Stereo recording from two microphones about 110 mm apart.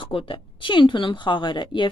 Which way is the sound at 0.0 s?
55° left (ahead or behind).